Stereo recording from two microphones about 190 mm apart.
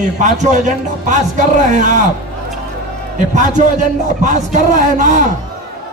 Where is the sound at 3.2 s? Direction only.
40° right (ahead or behind).